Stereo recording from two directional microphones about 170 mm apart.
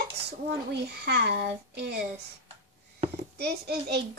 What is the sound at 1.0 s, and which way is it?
Speech, 75° right (ahead or behind).